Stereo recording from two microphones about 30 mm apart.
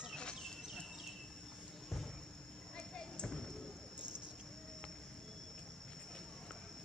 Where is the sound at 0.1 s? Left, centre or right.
Left.